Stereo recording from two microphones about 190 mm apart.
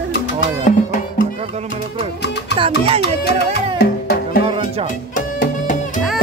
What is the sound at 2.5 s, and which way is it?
Music, 30° right (ahead or behind).